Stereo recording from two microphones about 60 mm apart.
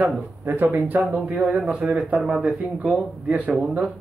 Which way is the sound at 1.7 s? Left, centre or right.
Right.